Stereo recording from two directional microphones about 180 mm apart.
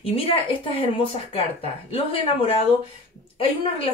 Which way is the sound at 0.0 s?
30° left (ahead or behind).